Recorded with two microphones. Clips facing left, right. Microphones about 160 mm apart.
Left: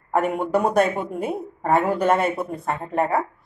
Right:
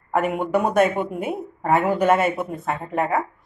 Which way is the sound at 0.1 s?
Centre (ahead or behind).